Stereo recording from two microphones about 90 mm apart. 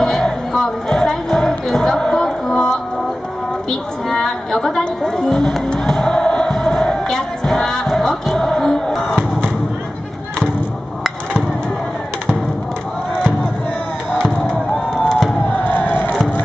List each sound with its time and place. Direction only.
0.0 s music: 5° left (ahead or behind)
4.1 s music: 5° left (ahead or behind)
15.0 s a sound: 5° left (ahead or behind)
15.6 s crowd: 20° left (ahead or behind)